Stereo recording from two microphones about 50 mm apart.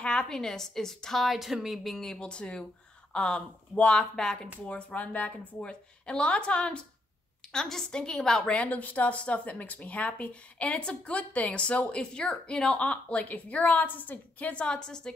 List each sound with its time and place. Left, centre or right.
0.0 s a woman's voice: centre
2.1 s a woman's voice: left
4.6 s a woman's voice: left
5.7 s speech: left
7.5 s a woman's voice: centre
8.5 s a woman's voice: left
14.5 s a woman's voice: left